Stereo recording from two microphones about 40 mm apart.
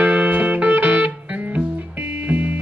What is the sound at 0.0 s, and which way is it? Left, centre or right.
Music, right.